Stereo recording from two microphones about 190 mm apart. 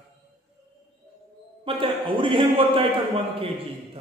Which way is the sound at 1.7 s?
25° right (ahead or behind).